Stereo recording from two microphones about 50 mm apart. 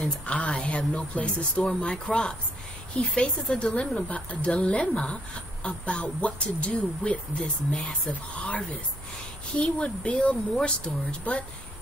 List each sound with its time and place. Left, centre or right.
0.0 s speech: left